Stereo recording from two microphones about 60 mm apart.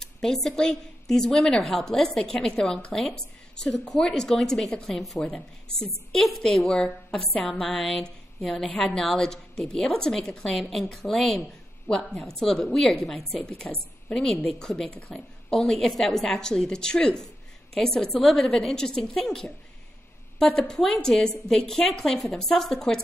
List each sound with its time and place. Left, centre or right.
0.0 s a woman's voice: centre